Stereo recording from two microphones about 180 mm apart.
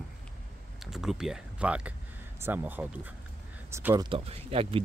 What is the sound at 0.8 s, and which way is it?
Speech, centre (ahead or behind).